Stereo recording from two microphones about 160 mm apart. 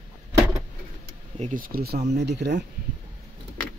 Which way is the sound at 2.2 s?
90° right.